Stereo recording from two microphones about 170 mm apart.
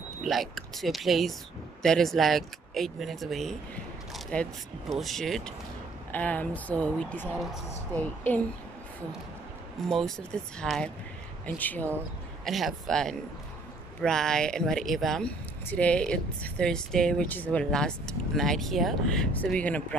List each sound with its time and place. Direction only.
0.2 s speech: centre (ahead or behind)
4.1 s a sound: 5° left (ahead or behind)
4.9 s speech: centre (ahead or behind)
9.8 s speech: centre (ahead or behind)